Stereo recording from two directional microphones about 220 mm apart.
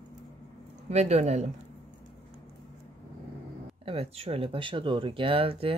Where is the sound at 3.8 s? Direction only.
25° right (ahead or behind).